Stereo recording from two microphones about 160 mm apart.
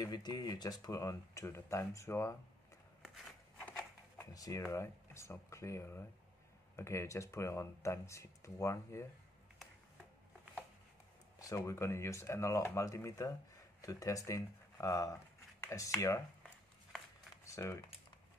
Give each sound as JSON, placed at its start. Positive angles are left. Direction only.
{"t": 0.0, "sound": "speech", "side_deg": 25}
{"t": 3.0, "sound": "a sound", "side_deg": 5}
{"t": 4.2, "sound": "speech", "side_deg": 20}
{"t": 11.3, "sound": "speech", "side_deg": 20}
{"t": 17.5, "sound": "typing", "side_deg": 20}